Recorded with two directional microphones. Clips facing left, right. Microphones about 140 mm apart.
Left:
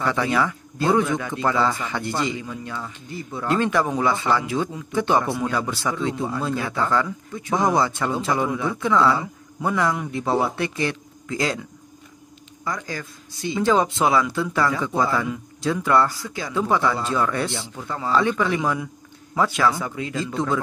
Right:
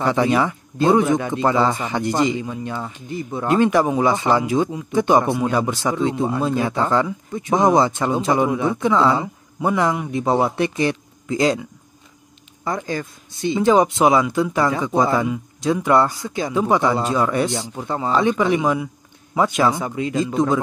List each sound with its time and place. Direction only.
0.0 s speech: 20° right (ahead or behind)
12.6 s speech: 25° right (ahead or behind)
17.7 s speech: 25° right (ahead or behind)